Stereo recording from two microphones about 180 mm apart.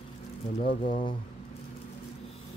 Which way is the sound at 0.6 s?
30° left (ahead or behind).